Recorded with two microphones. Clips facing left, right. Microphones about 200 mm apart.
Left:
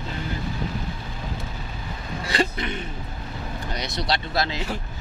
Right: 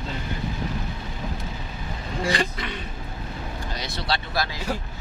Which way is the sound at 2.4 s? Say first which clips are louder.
Left 4 dB; 25° left (ahead or behind).